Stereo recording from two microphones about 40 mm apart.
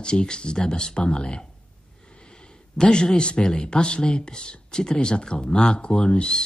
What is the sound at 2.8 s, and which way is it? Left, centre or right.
Speech, centre.